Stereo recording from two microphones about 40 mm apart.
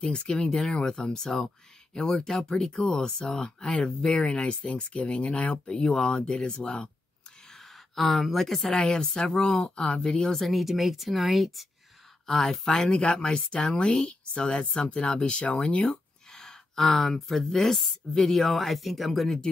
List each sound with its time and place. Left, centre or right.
0.0 s speech: left
7.5 s gasp: centre
8.6 s speech: centre
10.3 s speech: centre
12.3 s speech: centre; by 15.8 s left
16.3 s speech: centre